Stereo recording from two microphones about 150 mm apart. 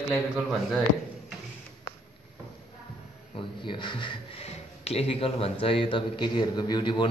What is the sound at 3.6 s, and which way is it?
Speech, 35° left (ahead or behind).